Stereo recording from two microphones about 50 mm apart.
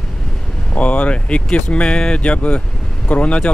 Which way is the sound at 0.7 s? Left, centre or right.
Left.